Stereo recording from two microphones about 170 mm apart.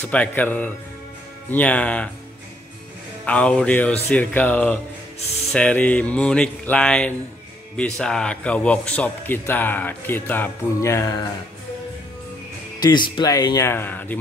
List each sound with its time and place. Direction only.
0.0 s a man's voice: 10° left (ahead or behind)
3.3 s a man's voice: 5° left (ahead or behind)
12.8 s speech: 25° left (ahead or behind); by 14.1 s 10° left (ahead or behind)